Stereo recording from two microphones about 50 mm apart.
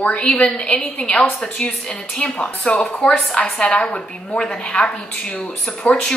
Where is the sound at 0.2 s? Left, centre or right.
Left.